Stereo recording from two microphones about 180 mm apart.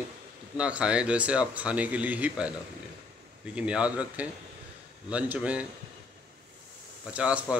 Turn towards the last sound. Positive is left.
turn(degrees=-5)  # may be behind; listen again after turning